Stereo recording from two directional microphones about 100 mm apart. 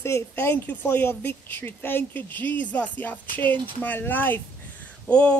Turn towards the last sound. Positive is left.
turn(degrees=10)  # may be behind; listen again after turning